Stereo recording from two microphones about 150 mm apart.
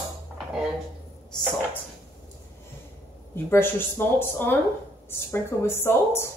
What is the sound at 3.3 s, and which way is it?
Speech, 15° left (ahead or behind).